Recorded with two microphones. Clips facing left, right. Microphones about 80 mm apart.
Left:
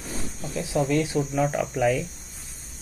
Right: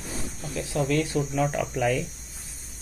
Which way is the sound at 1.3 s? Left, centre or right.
Centre.